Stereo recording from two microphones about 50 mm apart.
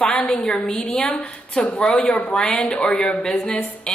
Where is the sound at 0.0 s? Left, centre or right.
Left.